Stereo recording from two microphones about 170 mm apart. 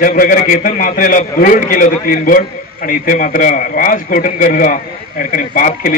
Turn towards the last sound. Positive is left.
turn(degrees=55)  # may be behind; listen again after turning